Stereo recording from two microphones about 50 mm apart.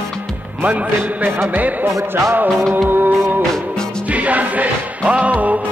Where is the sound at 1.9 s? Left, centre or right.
Right.